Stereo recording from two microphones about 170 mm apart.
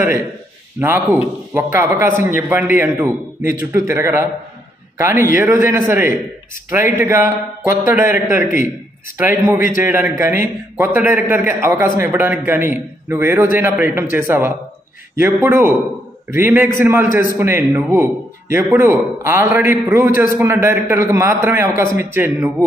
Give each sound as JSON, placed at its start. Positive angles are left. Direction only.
{"t": 0.7, "sound": "a man's voice", "side_deg": -10}